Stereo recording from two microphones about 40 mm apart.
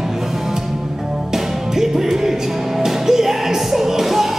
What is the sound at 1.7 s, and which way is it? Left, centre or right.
Music, centre.